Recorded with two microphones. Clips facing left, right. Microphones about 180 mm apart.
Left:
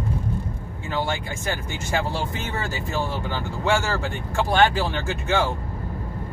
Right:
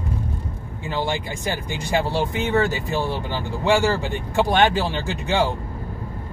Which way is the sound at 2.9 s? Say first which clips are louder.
Right 2 dB; 15° right (ahead or behind).